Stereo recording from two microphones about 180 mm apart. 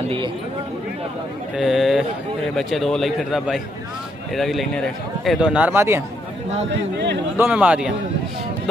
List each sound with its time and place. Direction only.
0.0 s speech: 30° right (ahead or behind)
1.6 s a man's voice: centre (ahead or behind)
7.3 s speech: 10° right (ahead or behind)